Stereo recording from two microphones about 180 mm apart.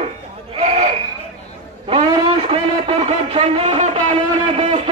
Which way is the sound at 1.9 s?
30° right (ahead or behind).